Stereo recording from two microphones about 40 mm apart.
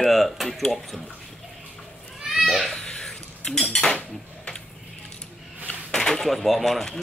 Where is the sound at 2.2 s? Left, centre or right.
Centre.